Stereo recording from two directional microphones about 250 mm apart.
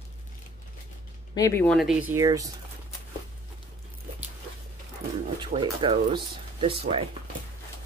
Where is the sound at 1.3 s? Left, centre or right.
Centre.